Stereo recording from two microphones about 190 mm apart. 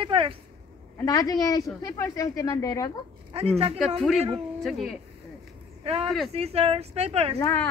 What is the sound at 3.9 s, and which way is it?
Speech, centre (ahead or behind).